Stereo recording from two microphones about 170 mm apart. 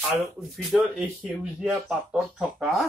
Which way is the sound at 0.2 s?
5° right (ahead or behind).